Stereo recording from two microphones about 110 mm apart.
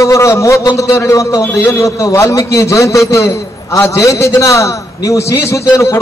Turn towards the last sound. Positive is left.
turn(degrees=25)  # may be behind; listen again after turning